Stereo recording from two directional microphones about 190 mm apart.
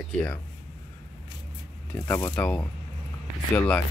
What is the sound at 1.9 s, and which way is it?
Speech, 10° left (ahead or behind).